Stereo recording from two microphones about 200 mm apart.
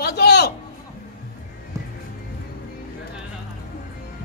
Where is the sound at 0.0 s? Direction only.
55° left (ahead or behind).